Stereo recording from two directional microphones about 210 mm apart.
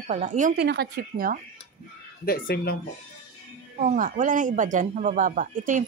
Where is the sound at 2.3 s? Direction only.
45° left (ahead or behind).